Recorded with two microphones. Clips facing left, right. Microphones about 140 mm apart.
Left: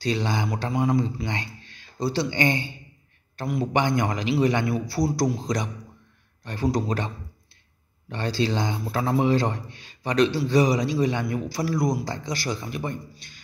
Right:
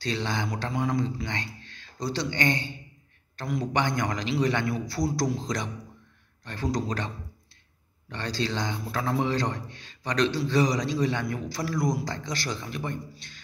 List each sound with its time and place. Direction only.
0.0 s a man's voice: 10° left (ahead or behind)
6.4 s a man's voice: 10° left (ahead or behind)
8.1 s a man's voice: 10° left (ahead or behind)